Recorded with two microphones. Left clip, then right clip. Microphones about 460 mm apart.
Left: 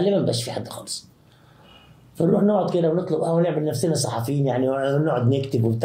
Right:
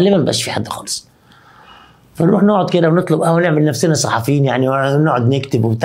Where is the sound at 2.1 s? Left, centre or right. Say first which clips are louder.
Right 6 dB; right.